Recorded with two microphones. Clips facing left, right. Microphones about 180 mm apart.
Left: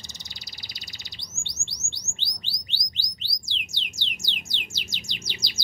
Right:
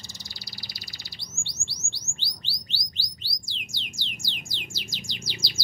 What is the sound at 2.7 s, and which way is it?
Music, 20° left (ahead or behind).